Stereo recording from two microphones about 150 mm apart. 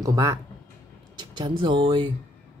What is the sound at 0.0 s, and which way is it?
Speech, 20° right (ahead or behind).